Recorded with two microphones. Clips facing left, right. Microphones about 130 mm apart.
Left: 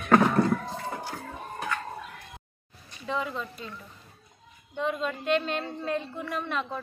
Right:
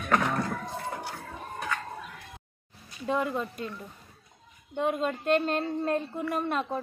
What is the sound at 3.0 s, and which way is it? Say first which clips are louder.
Speech: right 3 dB; 50° right (ahead or behind).